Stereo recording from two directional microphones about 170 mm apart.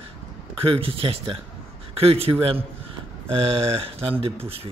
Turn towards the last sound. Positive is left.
turn(degrees=-35)  # may be behind; listen again after turning